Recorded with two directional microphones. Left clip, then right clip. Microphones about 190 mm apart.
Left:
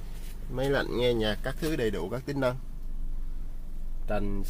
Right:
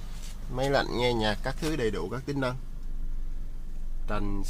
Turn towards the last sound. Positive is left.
turn(degrees=5)  # may be behind; listen again after turning